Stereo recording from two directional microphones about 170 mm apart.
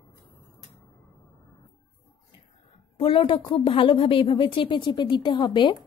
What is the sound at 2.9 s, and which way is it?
A woman's voice, 30° left (ahead or behind).